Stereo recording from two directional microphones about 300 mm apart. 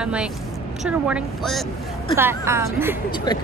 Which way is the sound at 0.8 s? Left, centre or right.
Centre.